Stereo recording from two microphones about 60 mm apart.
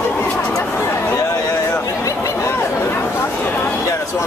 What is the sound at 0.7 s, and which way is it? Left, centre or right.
Chatter, left.